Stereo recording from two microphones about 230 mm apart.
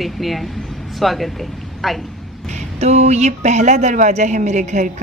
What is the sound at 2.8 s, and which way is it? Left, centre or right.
A woman's voice, right.